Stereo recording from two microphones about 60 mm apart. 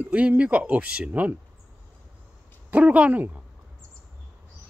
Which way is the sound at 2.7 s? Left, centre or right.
Right.